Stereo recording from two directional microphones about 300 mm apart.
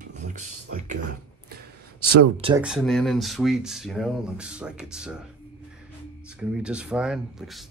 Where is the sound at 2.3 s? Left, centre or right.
Centre.